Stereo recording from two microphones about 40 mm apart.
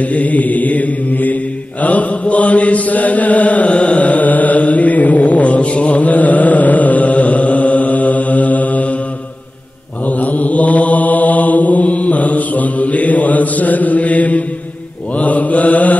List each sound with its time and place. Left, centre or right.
0.0 s mantra: left
10.0 s mantra: left